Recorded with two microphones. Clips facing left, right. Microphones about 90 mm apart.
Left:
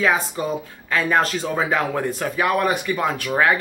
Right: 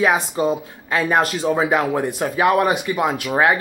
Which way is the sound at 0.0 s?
20° right (ahead or behind).